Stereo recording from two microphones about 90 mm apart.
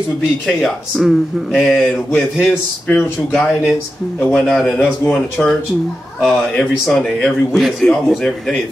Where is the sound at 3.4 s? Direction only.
Centre (ahead or behind).